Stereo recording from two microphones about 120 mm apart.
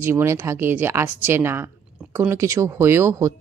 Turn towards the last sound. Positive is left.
turn(degrees=-25)  # may be behind; listen again after turning